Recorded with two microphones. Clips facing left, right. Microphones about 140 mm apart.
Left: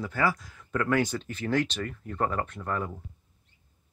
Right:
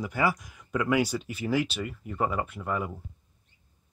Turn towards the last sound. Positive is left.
turn(degrees=-10)  # may be behind; listen again after turning